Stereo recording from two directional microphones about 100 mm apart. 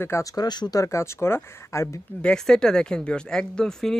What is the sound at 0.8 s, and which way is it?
Speech, 30° left (ahead or behind).